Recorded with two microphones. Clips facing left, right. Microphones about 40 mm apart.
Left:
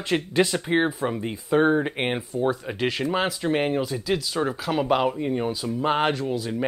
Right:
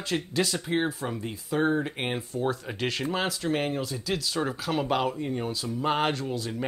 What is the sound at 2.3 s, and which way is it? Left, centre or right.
Speech, centre.